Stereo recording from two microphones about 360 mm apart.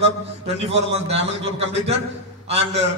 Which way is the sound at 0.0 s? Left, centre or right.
Centre.